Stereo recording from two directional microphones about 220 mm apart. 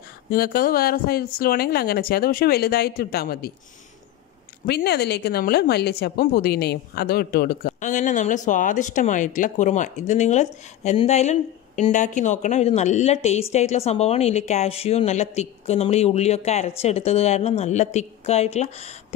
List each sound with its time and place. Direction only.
0.3 s speech: 40° left (ahead or behind)
4.6 s speech: 45° left (ahead or behind); by 18.9 s 30° left (ahead or behind)